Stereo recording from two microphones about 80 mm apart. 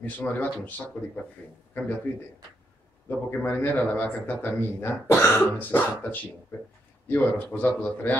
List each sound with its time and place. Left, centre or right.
0.0 s a man's voice: left
3.1 s speech: left